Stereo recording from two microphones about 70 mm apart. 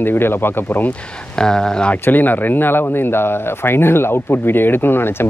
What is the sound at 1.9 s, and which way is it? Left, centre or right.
Speech, left.